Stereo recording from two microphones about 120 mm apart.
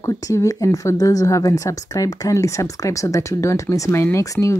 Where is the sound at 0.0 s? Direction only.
25° left (ahead or behind).